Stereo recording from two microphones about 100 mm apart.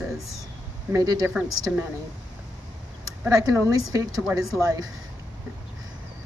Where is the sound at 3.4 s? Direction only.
35° right (ahead or behind).